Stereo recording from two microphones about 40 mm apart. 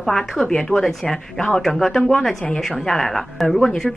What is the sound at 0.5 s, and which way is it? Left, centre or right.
Speech, left.